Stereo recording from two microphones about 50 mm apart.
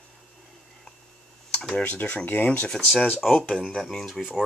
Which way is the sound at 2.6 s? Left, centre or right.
Centre.